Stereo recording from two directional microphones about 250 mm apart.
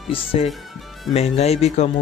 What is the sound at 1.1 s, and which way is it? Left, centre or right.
Speech, left.